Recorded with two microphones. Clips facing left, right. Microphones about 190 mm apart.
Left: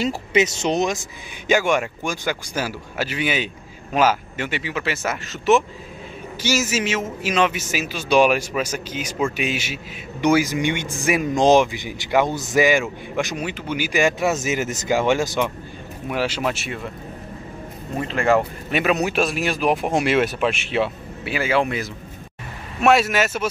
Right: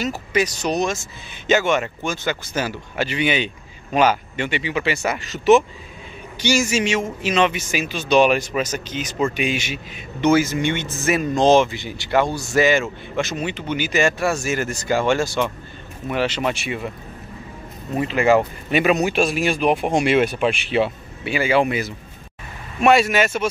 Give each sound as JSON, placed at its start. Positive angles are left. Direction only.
{"t": 0.0, "sound": "speech", "side_deg": 25}
{"t": 17.9, "sound": "speech", "side_deg": -5}